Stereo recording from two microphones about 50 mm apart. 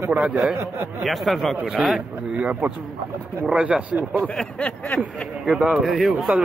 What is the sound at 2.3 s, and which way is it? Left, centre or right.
Speech, right.